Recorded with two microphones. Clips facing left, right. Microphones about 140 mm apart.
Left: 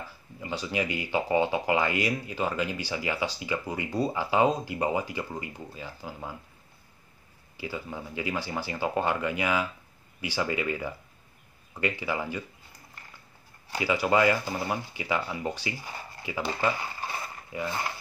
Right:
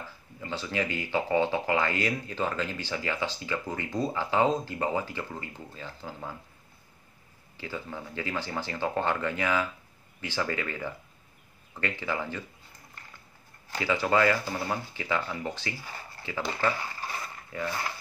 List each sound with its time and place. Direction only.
0.4 s speech: 15° left (ahead or behind)
7.5 s speech: 10° left (ahead or behind)
13.7 s speech: 10° left (ahead or behind)